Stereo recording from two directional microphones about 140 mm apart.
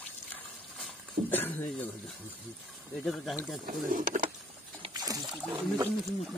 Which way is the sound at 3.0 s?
Centre (ahead or behind).